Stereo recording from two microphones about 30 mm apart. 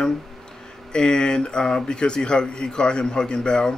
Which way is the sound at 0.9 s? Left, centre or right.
Left.